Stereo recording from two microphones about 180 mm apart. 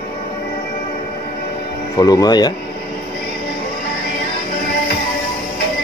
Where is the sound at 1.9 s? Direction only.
20° left (ahead or behind).